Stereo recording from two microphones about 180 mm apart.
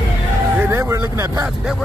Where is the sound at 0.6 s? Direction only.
15° right (ahead or behind).